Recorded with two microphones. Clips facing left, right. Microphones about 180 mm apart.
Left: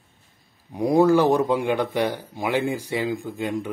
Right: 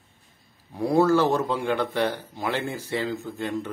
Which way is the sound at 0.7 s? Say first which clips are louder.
Left 3 dB; 15° left (ahead or behind).